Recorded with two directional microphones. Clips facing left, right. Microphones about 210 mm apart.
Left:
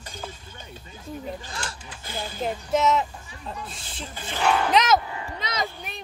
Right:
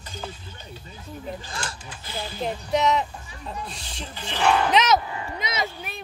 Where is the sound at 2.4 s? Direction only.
Centre (ahead or behind).